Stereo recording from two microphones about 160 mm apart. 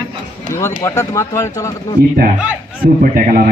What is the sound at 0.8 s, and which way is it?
Speech, 20° left (ahead or behind).